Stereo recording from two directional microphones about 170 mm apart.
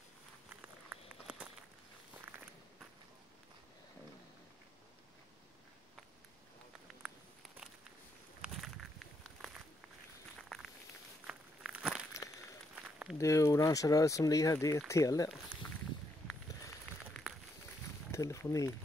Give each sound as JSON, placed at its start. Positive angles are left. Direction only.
{"t": 0.5, "sound": "walk", "side_deg": -5}
{"t": 7.0, "sound": "a sound", "side_deg": 0}
{"t": 8.4, "sound": "walk", "side_deg": 0}
{"t": 11.2, "sound": "walk", "side_deg": -5}
{"t": 12.7, "sound": "a sound", "side_deg": -5}
{"t": 13.2, "sound": "speech", "side_deg": 20}
{"t": 18.1, "sound": "speech", "side_deg": 15}